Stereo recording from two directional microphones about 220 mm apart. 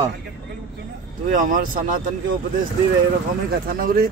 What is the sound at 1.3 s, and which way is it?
Speech, 35° right (ahead or behind).